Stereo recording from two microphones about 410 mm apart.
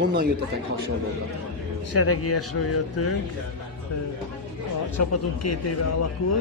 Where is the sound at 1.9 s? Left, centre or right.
Left.